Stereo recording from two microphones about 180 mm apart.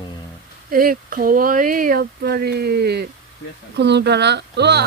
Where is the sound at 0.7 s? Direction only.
55° right (ahead or behind).